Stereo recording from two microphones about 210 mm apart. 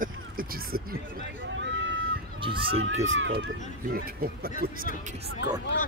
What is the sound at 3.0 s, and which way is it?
Speech, 65° right (ahead or behind).